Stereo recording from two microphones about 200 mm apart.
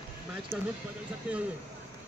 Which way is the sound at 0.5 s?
10° right (ahead or behind).